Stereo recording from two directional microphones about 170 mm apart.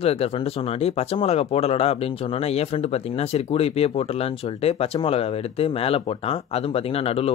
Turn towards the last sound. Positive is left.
turn(degrees=35)  # may be behind; listen again after turning